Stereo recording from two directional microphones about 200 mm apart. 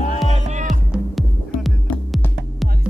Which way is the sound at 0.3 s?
35° right (ahead or behind).